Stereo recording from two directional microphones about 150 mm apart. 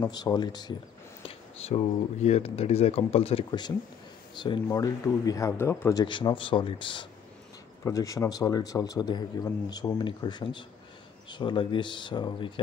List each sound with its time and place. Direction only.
0.0 s a man's voice: 25° left (ahead or behind)
1.2 s a sound: 40° left (ahead or behind)
2.2 s speech: 45° left (ahead or behind)
4.4 s a man's voice: 30° left (ahead or behind)
6.0 s speech: 35° left (ahead or behind)
7.8 s a man's voice: 20° left (ahead or behind)